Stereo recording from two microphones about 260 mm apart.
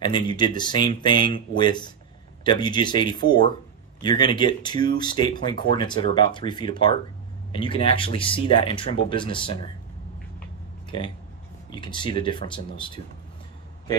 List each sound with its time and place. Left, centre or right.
0.0 s speech: centre
11.7 s speech: centre